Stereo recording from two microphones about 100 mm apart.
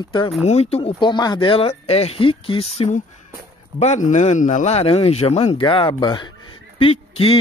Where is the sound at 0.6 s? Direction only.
90° left.